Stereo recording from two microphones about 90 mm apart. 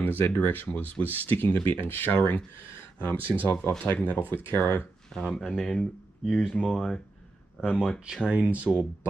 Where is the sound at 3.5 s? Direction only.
20° left (ahead or behind).